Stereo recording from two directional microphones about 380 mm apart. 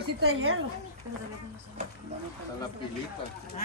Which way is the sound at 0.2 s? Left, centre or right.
Right.